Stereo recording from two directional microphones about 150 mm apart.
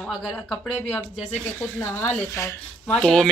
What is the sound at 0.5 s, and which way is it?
Speech, 5° left (ahead or behind).